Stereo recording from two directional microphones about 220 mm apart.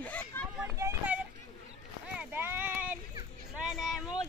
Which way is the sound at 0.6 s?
10° right (ahead or behind).